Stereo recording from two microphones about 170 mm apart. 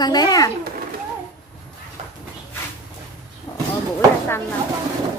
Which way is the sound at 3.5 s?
30° left (ahead or behind).